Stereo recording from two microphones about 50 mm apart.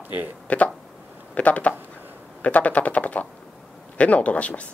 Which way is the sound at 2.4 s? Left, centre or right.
Left.